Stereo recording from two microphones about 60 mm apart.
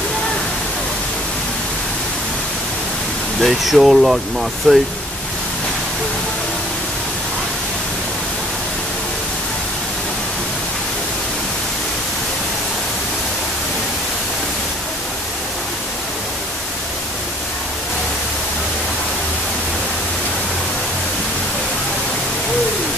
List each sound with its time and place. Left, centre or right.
3.3 s speech: centre